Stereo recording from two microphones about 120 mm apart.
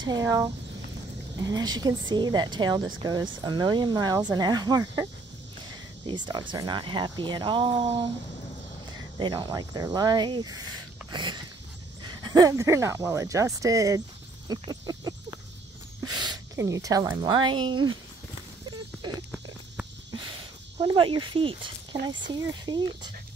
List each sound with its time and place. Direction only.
0.0 s speech: 30° right (ahead or behind)
6.0 s speech: 40° right (ahead or behind)
9.5 s speech: 35° right (ahead or behind)
14.5 s a sound: 35° right (ahead or behind)
16.5 s speech: 30° right (ahead or behind)
20.8 s speech: 40° right (ahead or behind)